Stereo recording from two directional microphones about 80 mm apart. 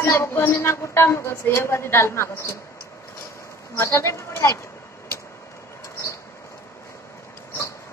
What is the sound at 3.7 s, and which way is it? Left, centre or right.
Speech, left.